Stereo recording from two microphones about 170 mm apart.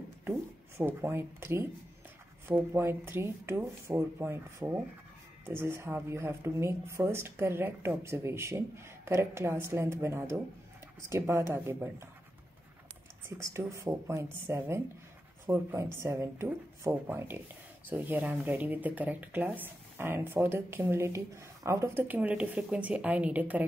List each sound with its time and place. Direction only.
0.7 s speech: 15° right (ahead or behind)
13.4 s speech: 15° right (ahead or behind)